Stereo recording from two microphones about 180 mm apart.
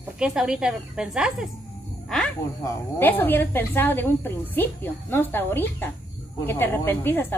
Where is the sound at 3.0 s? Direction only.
10° left (ahead or behind).